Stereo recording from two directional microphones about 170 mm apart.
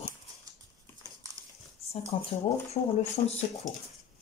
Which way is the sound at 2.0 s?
35° left (ahead or behind).